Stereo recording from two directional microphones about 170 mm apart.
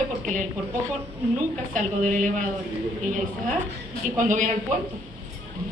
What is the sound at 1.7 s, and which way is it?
Speech, 45° right (ahead or behind).